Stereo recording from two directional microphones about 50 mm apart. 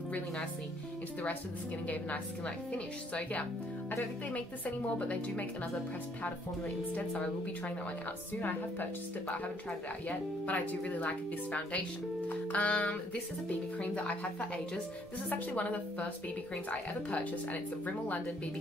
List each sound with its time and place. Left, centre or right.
1.9 s a woman's voice: left
4.3 s a woman's voice: left
8.4 s speech: left
10.0 s a woman's voice: left
12.3 s music: left
13.5 s a woman's voice: left
15.2 s speech: left